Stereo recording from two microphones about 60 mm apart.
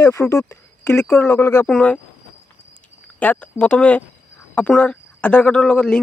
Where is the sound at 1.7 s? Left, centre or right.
Left.